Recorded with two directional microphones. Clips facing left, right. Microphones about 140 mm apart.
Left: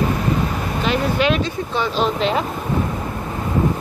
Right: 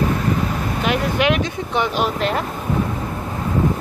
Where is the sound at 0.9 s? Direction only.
15° right (ahead or behind).